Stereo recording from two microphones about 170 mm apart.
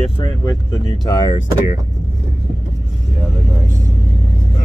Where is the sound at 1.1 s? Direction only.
25° left (ahead or behind).